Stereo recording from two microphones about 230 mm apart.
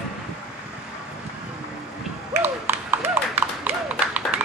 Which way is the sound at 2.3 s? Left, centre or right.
Centre.